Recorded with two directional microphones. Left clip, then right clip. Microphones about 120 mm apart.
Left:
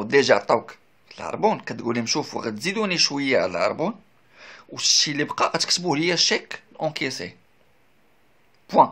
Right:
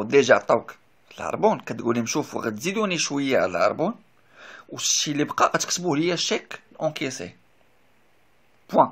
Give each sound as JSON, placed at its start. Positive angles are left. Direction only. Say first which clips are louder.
{"t": 0.0, "sound": "speech", "louder": "even", "side_deg": -15}
{"t": 1.0, "sound": "speech", "louder": "right 1 dB", "side_deg": -25}